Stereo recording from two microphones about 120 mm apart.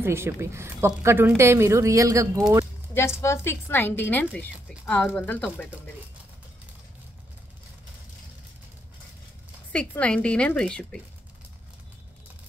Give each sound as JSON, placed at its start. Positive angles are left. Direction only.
{"t": 0.0, "sound": "a woman's voice", "side_deg": -20}
{"t": 2.9, "sound": "a woman's voice", "side_deg": 20}
{"t": 9.7, "sound": "speech", "side_deg": 10}